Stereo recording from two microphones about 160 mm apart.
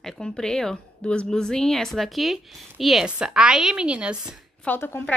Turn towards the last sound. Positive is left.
turn(degrees=15)  # may be behind; listen again after turning